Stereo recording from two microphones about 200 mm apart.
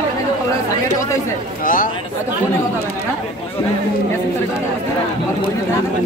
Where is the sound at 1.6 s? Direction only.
45° left (ahead or behind).